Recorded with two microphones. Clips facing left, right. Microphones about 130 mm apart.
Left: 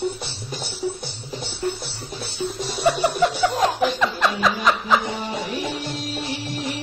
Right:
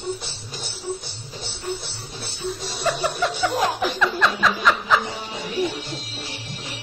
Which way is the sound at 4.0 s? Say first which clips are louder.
Even; 15° left (ahead or behind).